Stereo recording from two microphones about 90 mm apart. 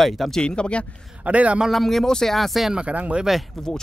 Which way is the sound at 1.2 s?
15° right (ahead or behind).